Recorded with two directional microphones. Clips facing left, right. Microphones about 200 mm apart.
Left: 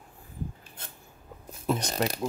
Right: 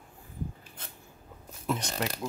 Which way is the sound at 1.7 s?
40° left (ahead or behind).